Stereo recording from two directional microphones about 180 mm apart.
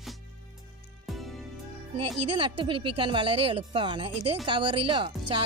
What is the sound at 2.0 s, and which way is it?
Speech, 30° right (ahead or behind).